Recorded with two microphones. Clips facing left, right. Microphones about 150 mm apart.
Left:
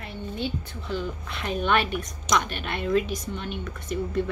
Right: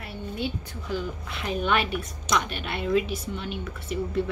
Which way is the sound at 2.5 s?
45° left (ahead or behind).